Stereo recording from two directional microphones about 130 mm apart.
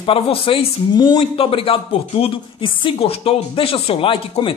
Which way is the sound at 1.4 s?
45° left (ahead or behind).